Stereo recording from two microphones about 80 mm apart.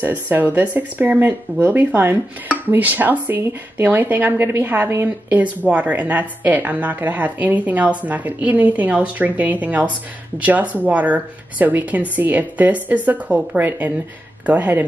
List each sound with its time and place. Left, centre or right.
0.0 s speech: right